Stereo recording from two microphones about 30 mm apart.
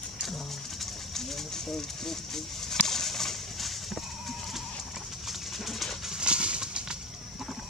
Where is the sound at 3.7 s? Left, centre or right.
Centre.